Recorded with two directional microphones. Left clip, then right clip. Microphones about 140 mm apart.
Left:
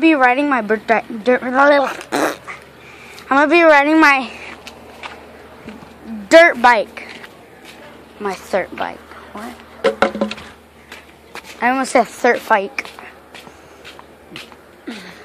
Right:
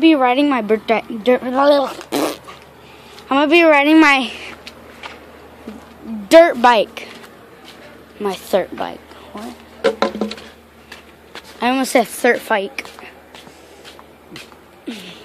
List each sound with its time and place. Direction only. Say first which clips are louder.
0.0 s a woman's voice: even; 30° right (ahead or behind); by 3.7 s 15° right (ahead or behind)
3.7 s a woman's voice: even; 35° right (ahead or behind)
6.2 s speech: even; 25° right (ahead or behind)
8.2 s a woman's voice: right 2 dB; 45° right (ahead or behind)
9.8 s a sound: left 2 dB; 20° left (ahead or behind)
11.6 s speech: left 1 dB; 35° right (ahead or behind)